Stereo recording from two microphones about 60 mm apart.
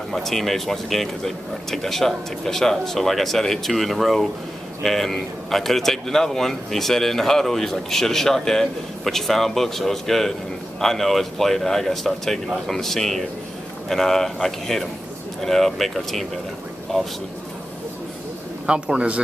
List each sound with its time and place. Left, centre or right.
0.1 s speech: centre
18.7 s a man's voice: centre